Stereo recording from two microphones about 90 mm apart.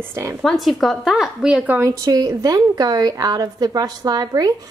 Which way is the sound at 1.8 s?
40° right (ahead or behind).